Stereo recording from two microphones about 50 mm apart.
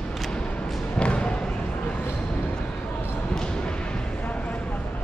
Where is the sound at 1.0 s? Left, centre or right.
Left.